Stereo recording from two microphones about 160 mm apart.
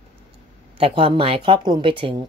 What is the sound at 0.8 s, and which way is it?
A woman's voice, 35° right (ahead or behind).